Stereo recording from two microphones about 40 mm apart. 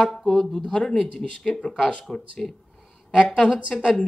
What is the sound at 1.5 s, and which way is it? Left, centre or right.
Speech, left.